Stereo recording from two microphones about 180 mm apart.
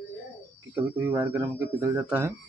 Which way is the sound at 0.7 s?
10° right (ahead or behind).